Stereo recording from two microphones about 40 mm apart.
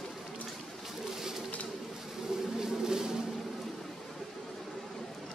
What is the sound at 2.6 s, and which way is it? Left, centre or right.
Music, centre.